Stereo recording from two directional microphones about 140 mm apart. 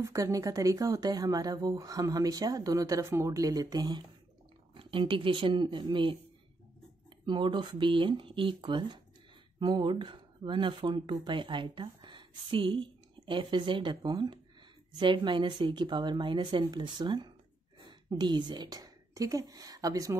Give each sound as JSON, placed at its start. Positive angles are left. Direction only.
{"t": 0.0, "sound": "speech", "side_deg": -25}
{"t": 7.2, "sound": "a woman's voice", "side_deg": -35}